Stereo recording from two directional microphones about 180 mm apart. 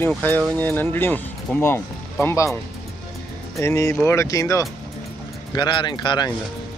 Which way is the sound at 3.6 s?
15° left (ahead or behind).